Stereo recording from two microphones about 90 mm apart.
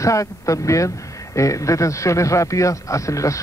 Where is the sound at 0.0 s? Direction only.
35° left (ahead or behind).